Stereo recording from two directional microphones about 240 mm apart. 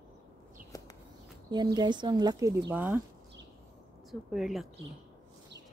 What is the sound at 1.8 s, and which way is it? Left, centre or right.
A woman's voice, centre.